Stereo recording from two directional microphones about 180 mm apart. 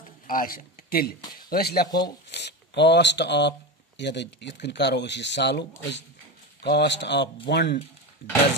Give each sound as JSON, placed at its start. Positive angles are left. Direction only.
{"t": 0.3, "sound": "speech", "side_deg": 50}
{"t": 1.9, "sound": "speech", "side_deg": 20}
{"t": 2.2, "sound": "speech", "side_deg": 70}